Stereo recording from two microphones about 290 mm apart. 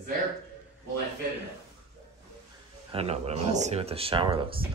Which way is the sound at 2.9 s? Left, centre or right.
Right.